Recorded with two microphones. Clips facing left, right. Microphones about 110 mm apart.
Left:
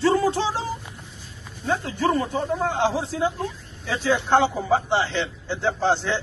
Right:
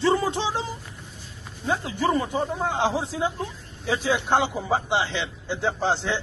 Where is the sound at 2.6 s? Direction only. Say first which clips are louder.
Left 2 dB; 15° right (ahead or behind).